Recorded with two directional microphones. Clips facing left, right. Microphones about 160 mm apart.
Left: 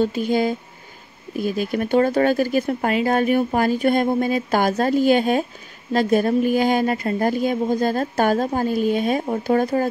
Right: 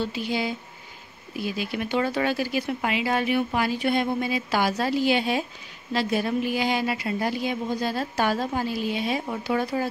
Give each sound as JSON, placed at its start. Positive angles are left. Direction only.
{"t": 0.0, "sound": "speech", "side_deg": 45}